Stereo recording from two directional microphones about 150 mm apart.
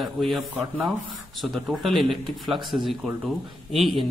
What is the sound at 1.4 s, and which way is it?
Speech, centre (ahead or behind).